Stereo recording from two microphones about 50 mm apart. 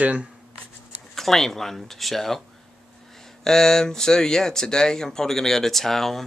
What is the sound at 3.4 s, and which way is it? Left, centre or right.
Speech, centre.